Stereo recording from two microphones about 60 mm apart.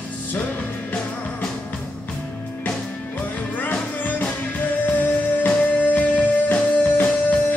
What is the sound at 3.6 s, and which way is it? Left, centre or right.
Music, left.